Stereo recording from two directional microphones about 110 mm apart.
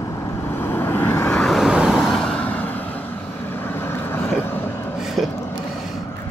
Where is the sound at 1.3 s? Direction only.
5° left (ahead or behind); by 4.8 s 20° left (ahead or behind).